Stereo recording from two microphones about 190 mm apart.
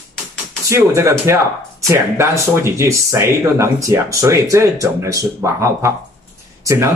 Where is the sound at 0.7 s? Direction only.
15° right (ahead or behind).